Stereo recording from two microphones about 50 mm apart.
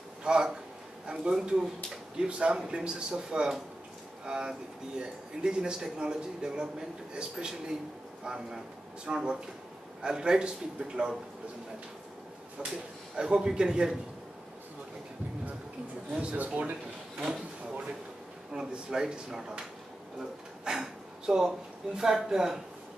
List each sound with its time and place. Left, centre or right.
0.2 s a man's voice: centre
12.6 s speech: centre
16.1 s speech: right
17.2 s drawer open or close: centre
18.5 s speech: centre
20.6 s speech: centre